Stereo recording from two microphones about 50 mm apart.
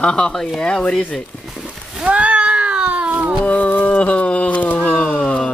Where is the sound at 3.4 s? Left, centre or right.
Left.